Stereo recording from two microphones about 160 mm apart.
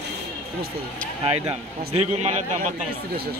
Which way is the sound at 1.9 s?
45° right (ahead or behind).